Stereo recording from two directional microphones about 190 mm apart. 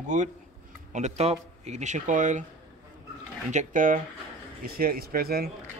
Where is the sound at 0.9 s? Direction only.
35° right (ahead or behind).